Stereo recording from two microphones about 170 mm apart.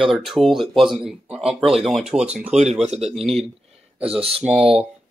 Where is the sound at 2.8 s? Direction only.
40° right (ahead or behind).